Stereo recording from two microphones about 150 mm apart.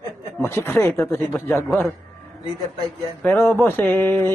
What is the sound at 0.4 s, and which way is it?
A man's voice, 15° left (ahead or behind).